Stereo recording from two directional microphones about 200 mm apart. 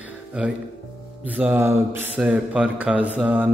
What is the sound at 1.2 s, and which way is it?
A man's voice, 10° right (ahead or behind).